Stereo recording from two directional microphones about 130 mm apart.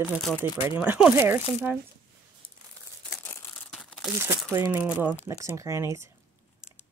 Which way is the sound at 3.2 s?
15° left (ahead or behind).